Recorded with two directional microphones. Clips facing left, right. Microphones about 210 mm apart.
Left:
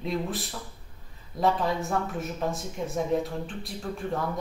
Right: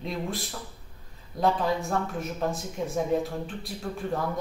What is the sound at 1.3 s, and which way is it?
Speech, centre (ahead or behind).